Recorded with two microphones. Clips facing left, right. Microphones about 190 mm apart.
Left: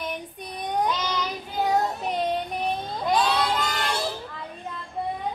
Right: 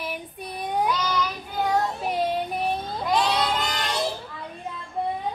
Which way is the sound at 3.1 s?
20° right (ahead or behind).